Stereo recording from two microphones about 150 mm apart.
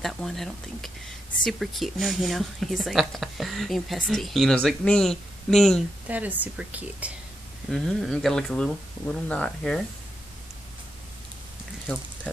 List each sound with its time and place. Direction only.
0.0 s a woman's voice: centre (ahead or behind)
6.0 s a woman's voice: 10° right (ahead or behind)
7.7 s a woman's voice: 5° left (ahead or behind)